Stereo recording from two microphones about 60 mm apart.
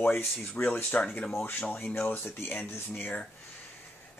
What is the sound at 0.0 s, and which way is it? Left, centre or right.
Speech, left.